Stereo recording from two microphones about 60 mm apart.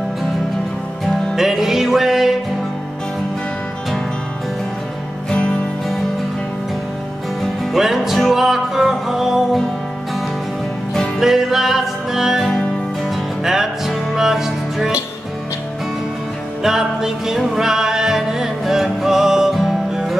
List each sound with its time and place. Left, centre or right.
1.3 s music: centre
5.3 s music: centre
7.7 s music: centre
11.1 s music: centre
16.6 s music: centre